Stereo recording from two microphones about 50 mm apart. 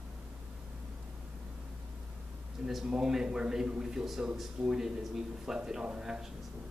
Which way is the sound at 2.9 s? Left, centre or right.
Centre.